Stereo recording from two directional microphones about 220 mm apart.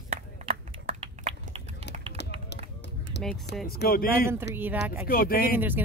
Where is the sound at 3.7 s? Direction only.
45° left (ahead or behind).